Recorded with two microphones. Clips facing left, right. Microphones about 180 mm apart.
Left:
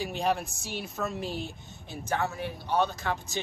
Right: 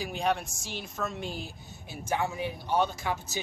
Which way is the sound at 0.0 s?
Centre (ahead or behind).